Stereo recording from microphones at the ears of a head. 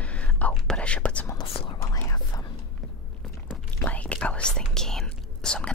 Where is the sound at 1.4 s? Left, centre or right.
Left.